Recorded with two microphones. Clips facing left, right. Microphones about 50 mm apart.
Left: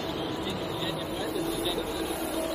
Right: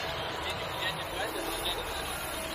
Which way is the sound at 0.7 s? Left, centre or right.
Right.